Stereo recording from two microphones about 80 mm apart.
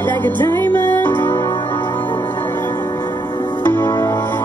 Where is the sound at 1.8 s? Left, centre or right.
Left.